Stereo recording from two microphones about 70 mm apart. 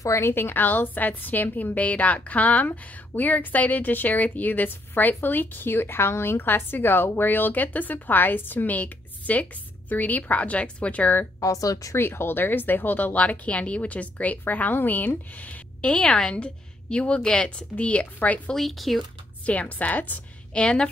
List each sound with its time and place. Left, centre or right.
0.0 s a woman's voice: left
11.3 s a woman's voice: left
11.9 s a woman's voice: left; by 18.4 s centre
18.5 s speech: centre
19.4 s a woman's voice: left
20.6 s a woman's voice: centre